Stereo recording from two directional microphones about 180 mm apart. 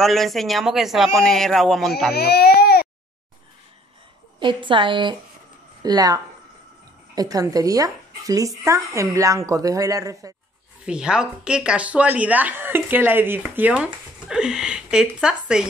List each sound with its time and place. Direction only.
0.0 s a man's voice: centre (ahead or behind)
2.1 s speech: 60° left (ahead or behind)
4.4 s speech: 25° right (ahead or behind)
10.9 s a man's voice: 5° right (ahead or behind)